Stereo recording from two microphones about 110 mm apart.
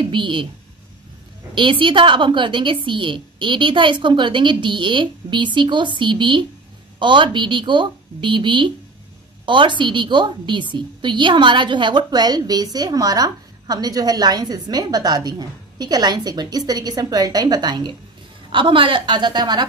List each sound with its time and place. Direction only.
0.0 s speech: 50° right (ahead or behind)
1.5 s a woman's voice: 50° right (ahead or behind)